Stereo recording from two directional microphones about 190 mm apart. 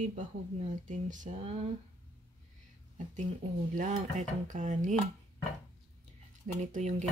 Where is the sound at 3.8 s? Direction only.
40° right (ahead or behind).